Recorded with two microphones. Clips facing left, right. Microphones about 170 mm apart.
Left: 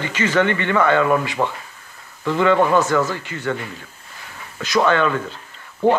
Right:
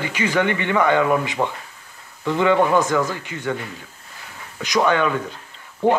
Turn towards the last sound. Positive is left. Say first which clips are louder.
# left 1 dB
turn(degrees=-15)  # may be behind; listen again after turning